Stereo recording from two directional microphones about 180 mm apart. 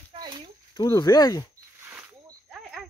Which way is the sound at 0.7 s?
20° left (ahead or behind).